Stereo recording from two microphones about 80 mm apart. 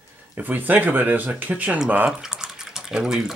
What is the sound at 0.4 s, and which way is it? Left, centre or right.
Speech, right.